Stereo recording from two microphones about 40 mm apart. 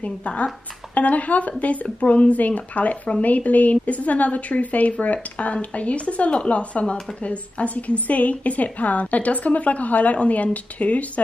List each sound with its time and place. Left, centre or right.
0.0 s speech: left